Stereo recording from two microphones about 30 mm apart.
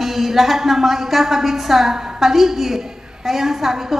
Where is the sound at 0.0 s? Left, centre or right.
Centre.